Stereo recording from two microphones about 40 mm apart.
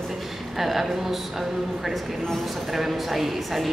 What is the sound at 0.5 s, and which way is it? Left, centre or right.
A woman's voice, centre.